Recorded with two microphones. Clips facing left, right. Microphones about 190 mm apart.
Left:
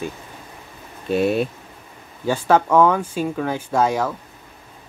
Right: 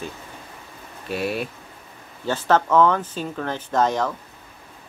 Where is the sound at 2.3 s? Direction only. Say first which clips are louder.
Left 3 dB; 10° left (ahead or behind).